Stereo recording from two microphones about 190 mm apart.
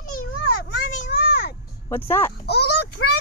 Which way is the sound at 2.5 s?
60° left (ahead or behind).